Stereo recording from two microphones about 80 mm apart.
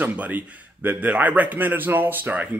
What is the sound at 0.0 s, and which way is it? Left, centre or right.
Speech, right.